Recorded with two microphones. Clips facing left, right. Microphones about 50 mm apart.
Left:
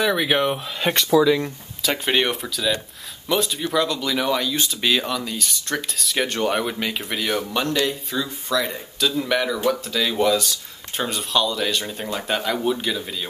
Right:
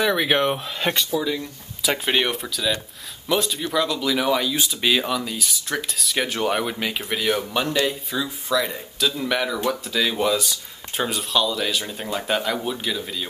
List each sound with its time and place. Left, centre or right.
0.0 s speech: centre
0.9 s speech: left
1.8 s speech: centre